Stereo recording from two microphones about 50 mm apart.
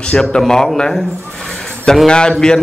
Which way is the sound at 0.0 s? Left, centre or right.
Centre.